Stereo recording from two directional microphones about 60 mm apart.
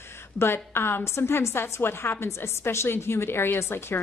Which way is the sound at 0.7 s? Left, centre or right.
Left.